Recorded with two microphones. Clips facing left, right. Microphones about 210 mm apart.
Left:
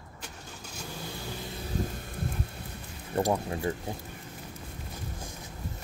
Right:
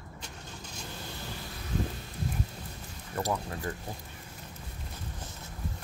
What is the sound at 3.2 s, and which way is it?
Speech, 30° left (ahead or behind).